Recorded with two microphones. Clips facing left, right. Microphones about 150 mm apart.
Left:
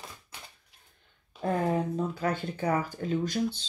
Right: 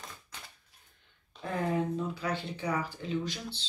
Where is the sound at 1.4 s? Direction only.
45° left (ahead or behind).